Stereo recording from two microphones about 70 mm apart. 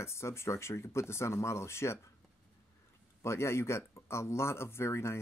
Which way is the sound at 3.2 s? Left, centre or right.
Left.